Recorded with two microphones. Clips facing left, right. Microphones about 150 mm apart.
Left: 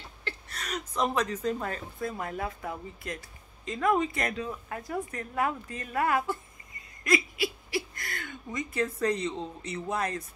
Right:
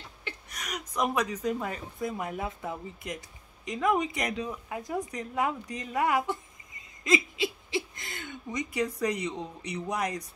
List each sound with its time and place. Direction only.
0.2 s speech: 15° right (ahead or behind)